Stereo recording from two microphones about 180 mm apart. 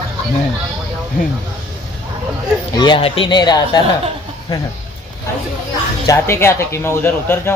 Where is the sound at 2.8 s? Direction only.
30° left (ahead or behind).